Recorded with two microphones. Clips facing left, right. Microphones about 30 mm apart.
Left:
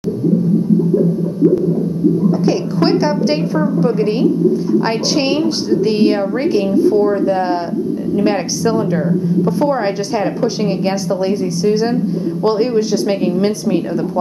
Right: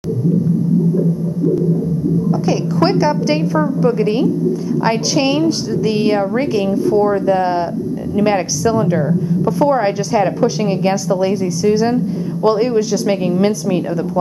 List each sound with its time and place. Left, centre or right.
2.4 s a woman's voice: centre
8.6 s a woman's voice: centre